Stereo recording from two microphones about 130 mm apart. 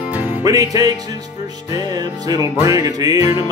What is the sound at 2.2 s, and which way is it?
Music, 25° right (ahead or behind).